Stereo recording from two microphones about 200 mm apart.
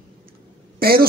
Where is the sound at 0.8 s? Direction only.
50° right (ahead or behind).